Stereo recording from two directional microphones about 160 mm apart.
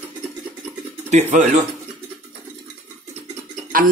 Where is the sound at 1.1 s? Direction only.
45° right (ahead or behind).